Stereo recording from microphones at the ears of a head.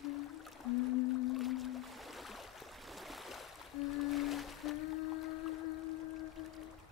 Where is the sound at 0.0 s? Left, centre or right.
Left.